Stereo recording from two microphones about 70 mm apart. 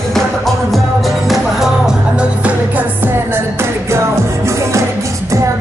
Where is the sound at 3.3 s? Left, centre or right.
Right.